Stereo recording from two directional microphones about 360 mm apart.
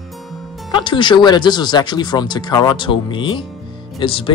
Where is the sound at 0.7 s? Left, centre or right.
Centre.